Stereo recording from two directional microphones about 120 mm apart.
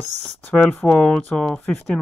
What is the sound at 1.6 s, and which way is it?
Speech, 20° left (ahead or behind).